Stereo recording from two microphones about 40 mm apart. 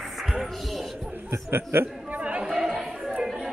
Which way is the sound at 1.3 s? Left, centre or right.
Right.